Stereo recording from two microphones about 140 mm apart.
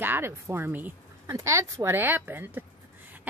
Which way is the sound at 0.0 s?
15° right (ahead or behind).